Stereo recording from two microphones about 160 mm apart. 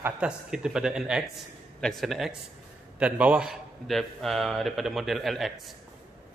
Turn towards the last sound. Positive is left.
turn(degrees=0)  # may be behind; listen again after turning